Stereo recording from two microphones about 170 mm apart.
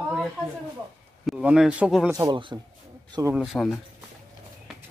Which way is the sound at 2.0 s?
20° right (ahead or behind).